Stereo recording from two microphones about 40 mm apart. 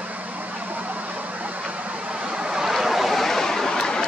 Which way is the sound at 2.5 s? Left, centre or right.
Centre.